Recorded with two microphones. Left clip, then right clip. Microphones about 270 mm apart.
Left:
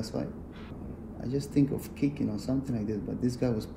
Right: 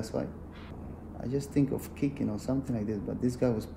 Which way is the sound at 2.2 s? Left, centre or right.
Right.